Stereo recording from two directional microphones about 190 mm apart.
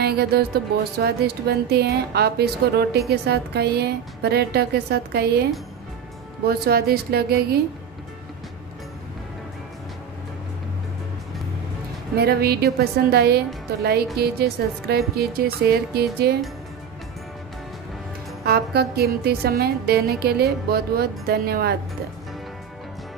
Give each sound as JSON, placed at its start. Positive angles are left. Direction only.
{"t": 0.0, "sound": "a woman's voice", "side_deg": -55}
{"t": 6.4, "sound": "speech", "side_deg": -55}
{"t": 12.2, "sound": "speech", "side_deg": -55}
{"t": 18.4, "sound": "speech", "side_deg": -55}